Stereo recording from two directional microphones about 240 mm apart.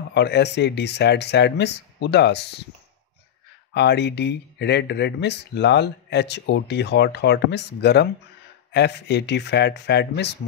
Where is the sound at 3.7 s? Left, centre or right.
Left.